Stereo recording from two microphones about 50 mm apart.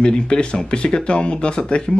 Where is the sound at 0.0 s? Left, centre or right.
Centre.